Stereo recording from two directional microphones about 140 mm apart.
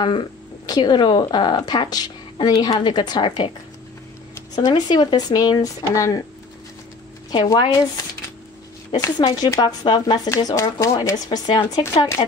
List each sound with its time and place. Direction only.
0.0 s a woman's voice: 30° left (ahead or behind)
4.6 s speech: 30° left (ahead or behind)
7.2 s a woman's voice: 30° left (ahead or behind)
10.3 s speech: 20° left (ahead or behind)